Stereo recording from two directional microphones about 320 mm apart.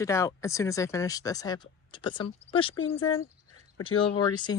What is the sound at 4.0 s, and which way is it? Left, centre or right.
Speech, centre.